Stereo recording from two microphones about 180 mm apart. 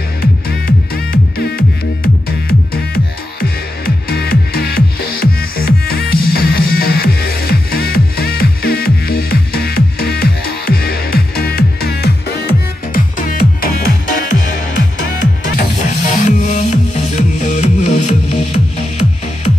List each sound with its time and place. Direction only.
0.2 s music: 60° left (ahead or behind)
2.7 s music: 55° left (ahead or behind)
12.9 s music: 50° left (ahead or behind)